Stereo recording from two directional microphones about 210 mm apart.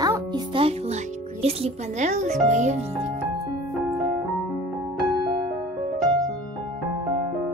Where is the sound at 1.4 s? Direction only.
30° right (ahead or behind).